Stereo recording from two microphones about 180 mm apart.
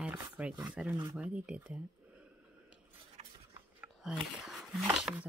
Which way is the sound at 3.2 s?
35° right (ahead or behind).